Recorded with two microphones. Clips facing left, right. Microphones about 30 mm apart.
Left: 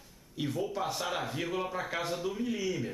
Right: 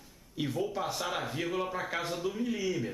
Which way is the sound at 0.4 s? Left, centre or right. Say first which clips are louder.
Even; centre.